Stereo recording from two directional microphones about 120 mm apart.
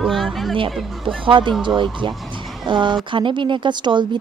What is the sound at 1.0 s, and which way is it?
Speech, 45° right (ahead or behind).